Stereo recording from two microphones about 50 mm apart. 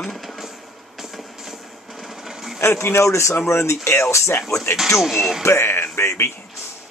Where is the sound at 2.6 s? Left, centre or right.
Left.